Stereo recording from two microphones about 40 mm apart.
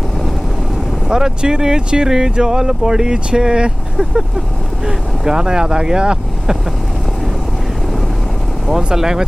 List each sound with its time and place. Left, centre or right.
1.0 s speech: centre
8.6 s speech: centre